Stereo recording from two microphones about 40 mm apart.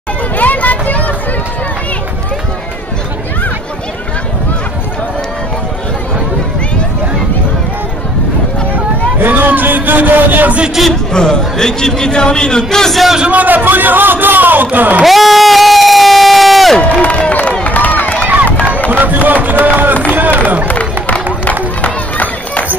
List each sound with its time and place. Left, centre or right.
0.4 s vehicle: left
8.7 s a sound: right
10.9 s a man's voice: centre
13.3 s a man's voice: right
15.0 s speech: centre
17.0 s a sound: left
17.6 s run: left
18.2 s run: right
18.9 s a man's voice: right
20.1 s a sound: right
20.6 s run: left